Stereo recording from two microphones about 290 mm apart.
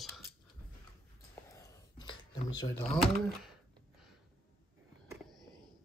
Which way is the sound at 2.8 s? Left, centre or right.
Centre.